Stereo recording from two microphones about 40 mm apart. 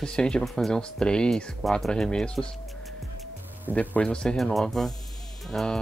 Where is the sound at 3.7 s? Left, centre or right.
Right.